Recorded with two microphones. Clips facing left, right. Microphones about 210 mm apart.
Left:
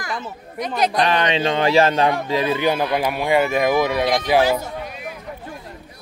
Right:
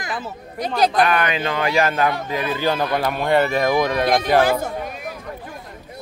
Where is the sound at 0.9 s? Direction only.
30° left (ahead or behind); by 4.1 s 10° left (ahead or behind).